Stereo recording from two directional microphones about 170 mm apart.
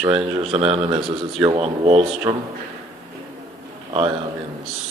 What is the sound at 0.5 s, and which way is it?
A man's voice, 35° right (ahead or behind).